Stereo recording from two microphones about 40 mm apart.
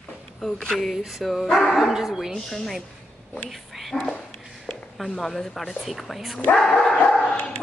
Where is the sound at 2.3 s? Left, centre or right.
Centre.